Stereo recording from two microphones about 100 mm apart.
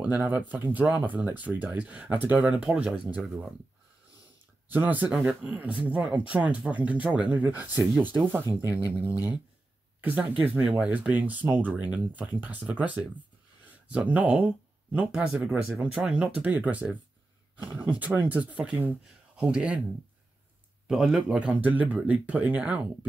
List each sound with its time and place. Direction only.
0.5 s speech: 15° right (ahead or behind)
4.6 s speech: 15° right (ahead or behind)
20.8 s speech: 5° right (ahead or behind)